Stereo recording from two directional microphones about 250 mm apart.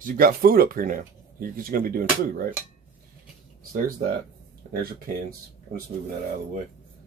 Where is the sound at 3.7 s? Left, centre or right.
Right.